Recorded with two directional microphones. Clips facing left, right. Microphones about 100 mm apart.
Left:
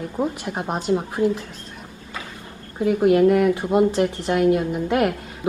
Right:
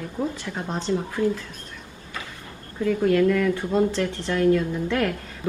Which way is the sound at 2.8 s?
20° left (ahead or behind).